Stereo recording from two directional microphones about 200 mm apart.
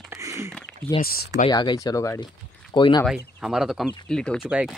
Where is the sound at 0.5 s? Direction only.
5° left (ahead or behind).